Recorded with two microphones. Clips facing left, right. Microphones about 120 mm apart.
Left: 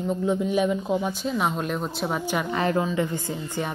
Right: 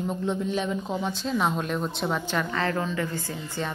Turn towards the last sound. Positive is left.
turn(degrees=15)  # may be behind; listen again after turning